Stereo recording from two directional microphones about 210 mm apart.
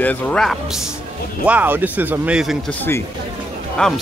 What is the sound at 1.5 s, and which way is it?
Speech, 10° right (ahead or behind).